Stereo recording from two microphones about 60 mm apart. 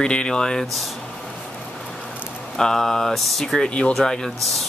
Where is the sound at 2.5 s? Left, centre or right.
Centre.